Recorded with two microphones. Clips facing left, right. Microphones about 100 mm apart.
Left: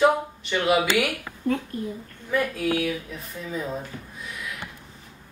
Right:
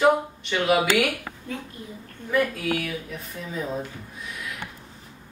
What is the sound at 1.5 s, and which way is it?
Speech, 55° left (ahead or behind).